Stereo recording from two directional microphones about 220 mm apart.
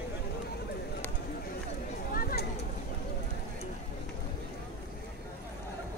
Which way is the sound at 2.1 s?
40° left (ahead or behind).